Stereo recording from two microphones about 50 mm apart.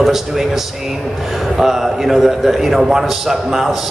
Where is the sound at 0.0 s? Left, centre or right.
Centre.